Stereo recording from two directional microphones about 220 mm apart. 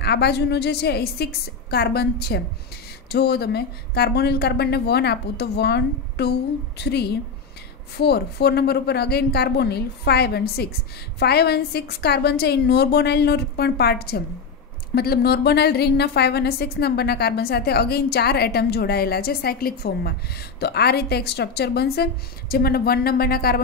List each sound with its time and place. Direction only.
0.0 s a woman's voice: 50° left (ahead or behind)